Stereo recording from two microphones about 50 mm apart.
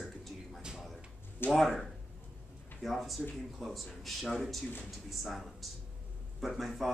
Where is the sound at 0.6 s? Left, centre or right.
Centre.